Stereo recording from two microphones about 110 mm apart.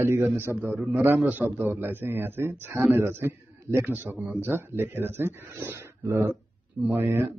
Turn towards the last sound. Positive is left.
turn(degrees=-20)  # may be behind; listen again after turning